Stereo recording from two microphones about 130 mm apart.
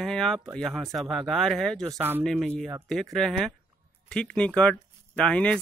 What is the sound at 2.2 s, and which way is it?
Speech, 5° left (ahead or behind).